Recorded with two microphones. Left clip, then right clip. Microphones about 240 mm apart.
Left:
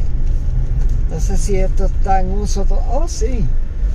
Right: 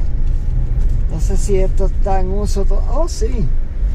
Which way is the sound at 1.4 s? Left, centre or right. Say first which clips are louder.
Right 3 dB; left.